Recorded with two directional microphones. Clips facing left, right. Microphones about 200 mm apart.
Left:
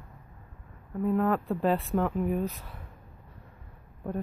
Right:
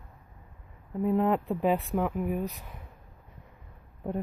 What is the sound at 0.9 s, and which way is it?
Speech, 20° right (ahead or behind).